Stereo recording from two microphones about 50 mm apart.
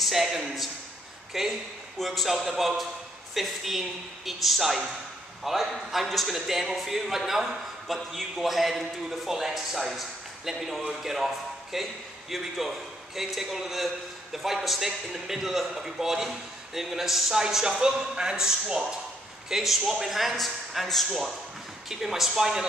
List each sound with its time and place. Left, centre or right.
0.0 s a man's voice: centre